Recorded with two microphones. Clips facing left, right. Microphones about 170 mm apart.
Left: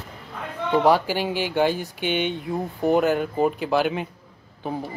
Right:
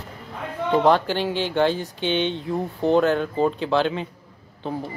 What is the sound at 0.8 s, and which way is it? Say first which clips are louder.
Speech: even; 5° left (ahead or behind).